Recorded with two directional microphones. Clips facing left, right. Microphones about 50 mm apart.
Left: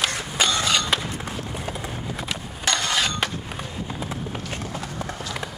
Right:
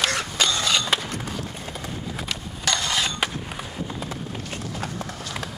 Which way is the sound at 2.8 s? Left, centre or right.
Left.